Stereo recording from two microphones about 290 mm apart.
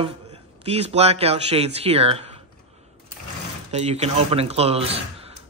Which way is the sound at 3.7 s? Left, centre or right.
Right.